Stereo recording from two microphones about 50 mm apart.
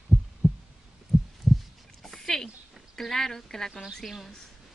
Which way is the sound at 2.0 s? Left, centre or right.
Centre.